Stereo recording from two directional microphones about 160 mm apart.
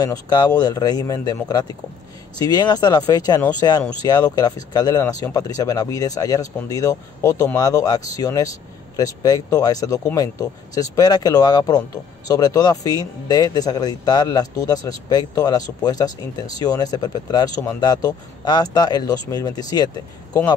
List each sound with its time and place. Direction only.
0.0 s speech: 25° left (ahead or behind)